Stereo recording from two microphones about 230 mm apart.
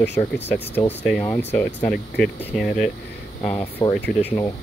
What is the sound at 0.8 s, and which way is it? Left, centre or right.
Speech, centre.